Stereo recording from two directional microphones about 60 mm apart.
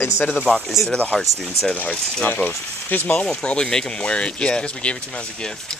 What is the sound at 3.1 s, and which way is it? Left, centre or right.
Speech, centre.